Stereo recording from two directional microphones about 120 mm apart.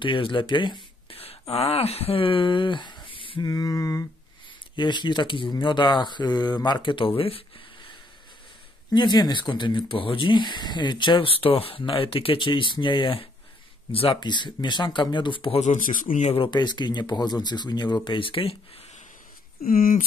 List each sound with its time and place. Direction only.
0.0 s speech: 45° left (ahead or behind)
1.1 s a sound: 55° left (ahead or behind)
1.5 s speech: 60° left (ahead or behind); by 7.1 s 40° left (ahead or behind)
7.2 s a sound: 50° left (ahead or behind)
8.9 s speech: 35° left (ahead or behind)
15.6 s speech: 90° left
16.3 s speech: 40° left (ahead or behind)